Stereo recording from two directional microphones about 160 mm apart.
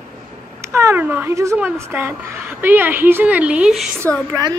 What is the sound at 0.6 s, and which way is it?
Speech, 15° right (ahead or behind).